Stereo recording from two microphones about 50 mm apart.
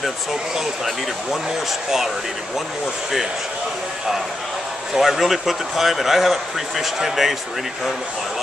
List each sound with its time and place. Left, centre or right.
0.0 s speech: centre
4.9 s speech: centre